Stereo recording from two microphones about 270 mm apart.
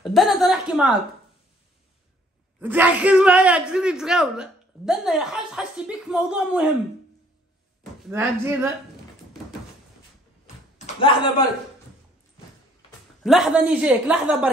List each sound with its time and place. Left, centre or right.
0.0 s a sound: centre
2.6 s speech: centre
8.1 s speech: centre
11.0 s a man's voice: centre
13.2 s speech: centre